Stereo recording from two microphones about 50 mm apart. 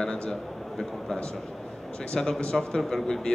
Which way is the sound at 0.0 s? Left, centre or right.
Centre.